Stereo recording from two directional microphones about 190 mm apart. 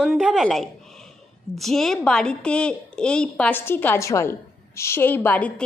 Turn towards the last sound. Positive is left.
turn(degrees=10)  # may be behind; listen again after turning